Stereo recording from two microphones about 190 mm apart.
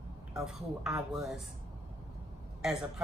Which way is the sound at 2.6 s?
5° right (ahead or behind).